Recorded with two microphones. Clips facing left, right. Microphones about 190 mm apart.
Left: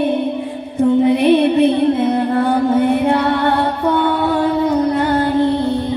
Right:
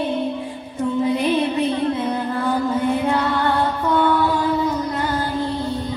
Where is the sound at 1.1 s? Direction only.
65° left (ahead or behind).